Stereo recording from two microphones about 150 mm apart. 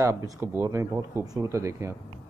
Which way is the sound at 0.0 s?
20° right (ahead or behind).